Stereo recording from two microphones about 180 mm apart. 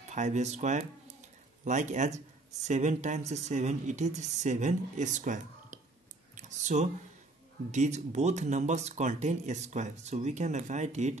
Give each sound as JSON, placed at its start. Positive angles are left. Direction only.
{"t": 0.1, "sound": "speech", "side_deg": -40}
{"t": 6.3, "sound": "a sound", "side_deg": -40}
{"t": 7.7, "sound": "speech", "side_deg": -40}